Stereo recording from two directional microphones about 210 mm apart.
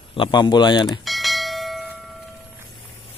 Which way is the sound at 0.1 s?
25° left (ahead or behind).